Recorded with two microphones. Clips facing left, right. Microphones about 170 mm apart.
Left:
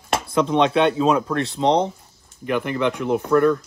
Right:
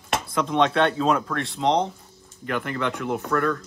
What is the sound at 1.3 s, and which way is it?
Speech, 30° left (ahead or behind).